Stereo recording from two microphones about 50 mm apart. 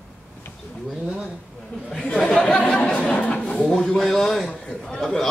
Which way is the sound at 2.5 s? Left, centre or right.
Left.